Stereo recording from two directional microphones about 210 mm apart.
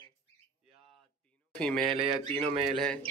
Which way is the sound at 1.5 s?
5° left (ahead or behind).